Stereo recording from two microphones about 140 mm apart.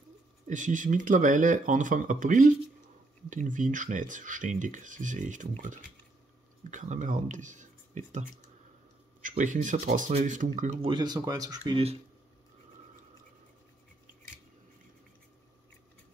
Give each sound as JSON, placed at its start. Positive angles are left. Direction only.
{"t": 0.5, "sound": "speech", "side_deg": -65}
{"t": 9.4, "sound": "speech", "side_deg": -65}
{"t": 10.8, "sound": "speech", "side_deg": -35}